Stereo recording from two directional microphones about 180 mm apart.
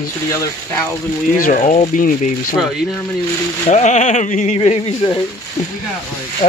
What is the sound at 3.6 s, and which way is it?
Speech, 40° left (ahead or behind).